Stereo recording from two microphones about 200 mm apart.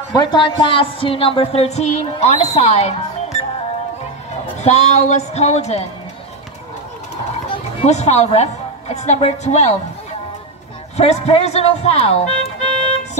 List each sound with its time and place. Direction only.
0.1 s a woman's voice: 20° left (ahead or behind)
4.6 s speech: 35° left (ahead or behind)
7.5 s a woman's voice: 35° left (ahead or behind)
11.0 s speech: 30° left (ahead or behind)